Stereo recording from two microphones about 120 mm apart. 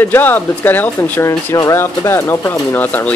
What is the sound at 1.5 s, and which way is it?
Speech, 25° left (ahead or behind).